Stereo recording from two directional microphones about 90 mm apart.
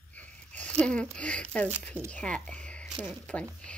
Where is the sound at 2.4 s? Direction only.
10° left (ahead or behind).